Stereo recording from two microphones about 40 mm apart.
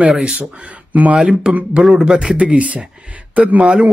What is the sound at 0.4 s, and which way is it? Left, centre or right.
Speech, right.